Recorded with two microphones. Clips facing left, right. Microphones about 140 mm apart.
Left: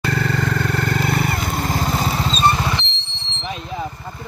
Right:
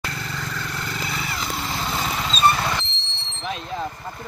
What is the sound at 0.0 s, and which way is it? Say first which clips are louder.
Vehicle: left 10 dB; 65° left (ahead or behind).